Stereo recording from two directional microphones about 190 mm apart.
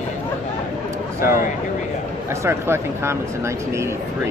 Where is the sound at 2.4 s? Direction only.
15° right (ahead or behind).